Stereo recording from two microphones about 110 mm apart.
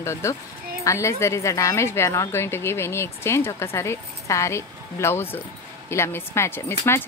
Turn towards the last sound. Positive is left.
turn(degrees=25)  # may be behind; listen again after turning